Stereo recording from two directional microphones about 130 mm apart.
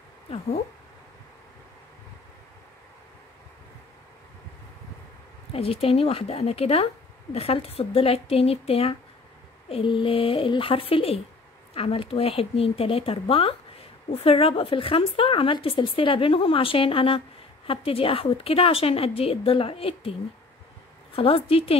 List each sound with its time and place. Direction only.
0.3 s speech: 55° left (ahead or behind)
5.5 s a woman's voice: 50° left (ahead or behind)